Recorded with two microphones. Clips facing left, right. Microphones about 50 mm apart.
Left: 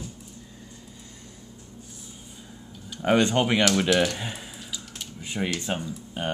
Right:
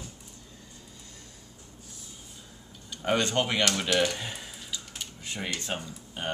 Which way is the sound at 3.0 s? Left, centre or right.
Centre.